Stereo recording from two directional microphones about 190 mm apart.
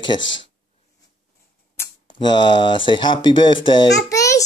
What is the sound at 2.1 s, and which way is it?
Speech, 25° left (ahead or behind).